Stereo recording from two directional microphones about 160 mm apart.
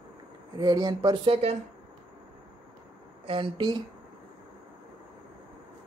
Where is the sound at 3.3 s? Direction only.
30° right (ahead or behind).